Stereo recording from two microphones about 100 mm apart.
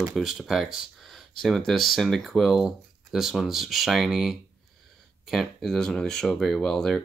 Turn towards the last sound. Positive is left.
turn(degrees=5)  # may be behind; listen again after turning